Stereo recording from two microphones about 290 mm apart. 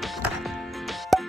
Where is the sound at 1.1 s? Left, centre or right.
Centre.